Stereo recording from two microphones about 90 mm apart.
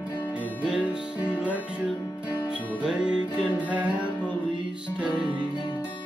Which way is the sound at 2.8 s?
10° right (ahead or behind).